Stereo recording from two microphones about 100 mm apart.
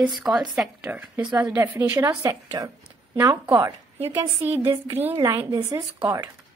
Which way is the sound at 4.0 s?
60° right (ahead or behind).